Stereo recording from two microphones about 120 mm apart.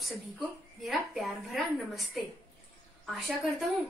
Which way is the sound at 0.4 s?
Centre (ahead or behind).